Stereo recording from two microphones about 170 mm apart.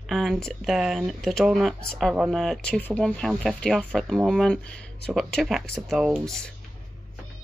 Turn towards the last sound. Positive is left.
turn(degrees=5)  # may be behind; listen again after turning